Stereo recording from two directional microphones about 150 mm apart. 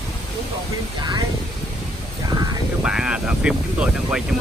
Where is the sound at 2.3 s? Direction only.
25° right (ahead or behind).